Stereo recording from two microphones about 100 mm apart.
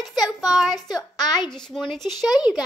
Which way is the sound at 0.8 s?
40° left (ahead or behind).